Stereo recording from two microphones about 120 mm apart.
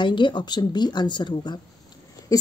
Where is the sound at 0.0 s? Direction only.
40° left (ahead or behind).